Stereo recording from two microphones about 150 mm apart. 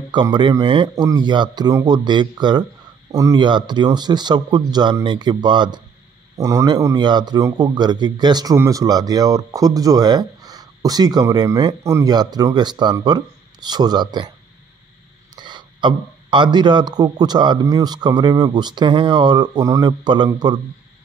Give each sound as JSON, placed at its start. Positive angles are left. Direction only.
{"t": 0.1, "sound": "speech", "side_deg": -30}
{"t": 15.3, "sound": "speech", "side_deg": -30}